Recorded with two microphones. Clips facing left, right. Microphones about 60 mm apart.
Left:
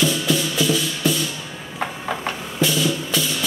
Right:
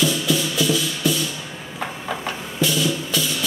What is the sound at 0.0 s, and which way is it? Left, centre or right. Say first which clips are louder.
Music: even; left.